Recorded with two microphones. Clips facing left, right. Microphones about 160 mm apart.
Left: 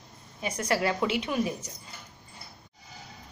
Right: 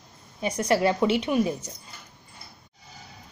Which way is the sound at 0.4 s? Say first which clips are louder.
Right 5 dB; 25° right (ahead or behind).